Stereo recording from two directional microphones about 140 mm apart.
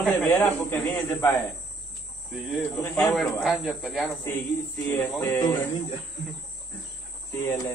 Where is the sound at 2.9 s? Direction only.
5° left (ahead or behind).